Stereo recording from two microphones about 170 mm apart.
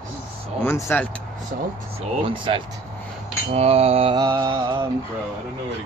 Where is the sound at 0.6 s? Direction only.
15° left (ahead or behind).